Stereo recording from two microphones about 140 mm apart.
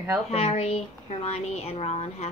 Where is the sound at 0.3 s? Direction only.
50° left (ahead or behind).